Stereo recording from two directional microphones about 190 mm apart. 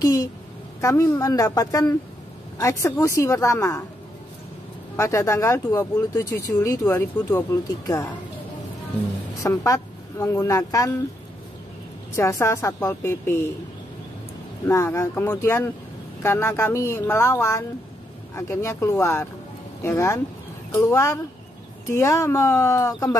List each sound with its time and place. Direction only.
0.0 s speech: 15° left (ahead or behind)
4.9 s speech: 15° left (ahead or behind)
9.4 s a woman's voice: 15° left (ahead or behind)
12.2 s speech: 15° left (ahead or behind)
14.7 s speech: 15° left (ahead or behind)